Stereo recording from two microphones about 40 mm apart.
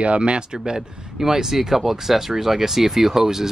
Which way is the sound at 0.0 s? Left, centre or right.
Right.